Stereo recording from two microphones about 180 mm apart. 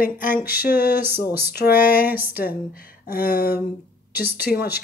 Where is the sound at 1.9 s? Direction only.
10° right (ahead or behind).